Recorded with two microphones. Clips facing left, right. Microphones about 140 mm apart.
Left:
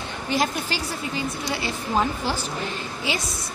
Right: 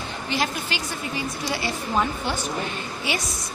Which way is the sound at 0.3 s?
45° left (ahead or behind).